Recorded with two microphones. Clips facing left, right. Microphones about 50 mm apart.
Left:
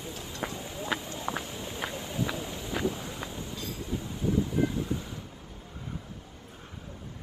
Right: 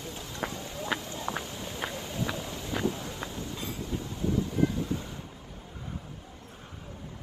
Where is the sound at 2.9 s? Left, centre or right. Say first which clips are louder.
Even; centre.